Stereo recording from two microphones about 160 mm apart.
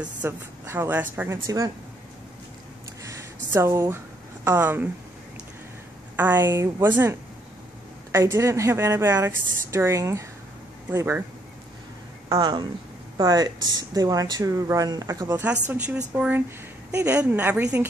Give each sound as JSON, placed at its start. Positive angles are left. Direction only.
{"t": 0.0, "sound": "a woman's voice", "side_deg": -10}
{"t": 3.5, "sound": "a woman's voice", "side_deg": -15}
{"t": 6.1, "sound": "a woman's voice", "side_deg": -10}
{"t": 12.3, "sound": "a woman's voice", "side_deg": -25}